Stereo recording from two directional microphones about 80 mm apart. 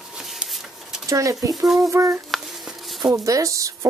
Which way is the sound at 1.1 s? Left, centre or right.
Right.